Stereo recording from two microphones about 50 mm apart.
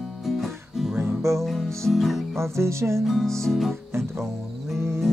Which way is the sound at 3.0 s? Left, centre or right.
Centre.